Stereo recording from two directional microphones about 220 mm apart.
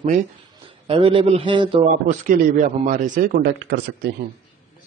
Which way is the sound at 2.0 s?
35° right (ahead or behind).